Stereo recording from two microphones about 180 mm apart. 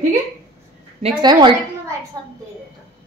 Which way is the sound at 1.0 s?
25° right (ahead or behind).